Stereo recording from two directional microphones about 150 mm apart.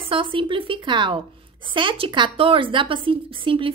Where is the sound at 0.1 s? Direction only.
35° right (ahead or behind).